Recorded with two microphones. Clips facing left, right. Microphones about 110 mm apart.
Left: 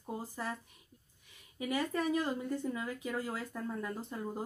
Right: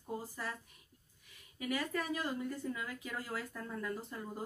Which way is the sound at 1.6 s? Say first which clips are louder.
Left 3 dB; 20° left (ahead or behind).